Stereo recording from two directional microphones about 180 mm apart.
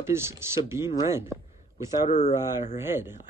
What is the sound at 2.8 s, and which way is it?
Speech, 15° right (ahead or behind).